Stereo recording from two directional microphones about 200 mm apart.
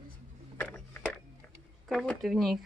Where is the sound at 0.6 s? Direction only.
10° left (ahead or behind).